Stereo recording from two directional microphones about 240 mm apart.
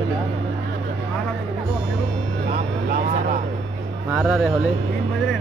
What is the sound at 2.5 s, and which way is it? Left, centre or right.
Vehicle, right.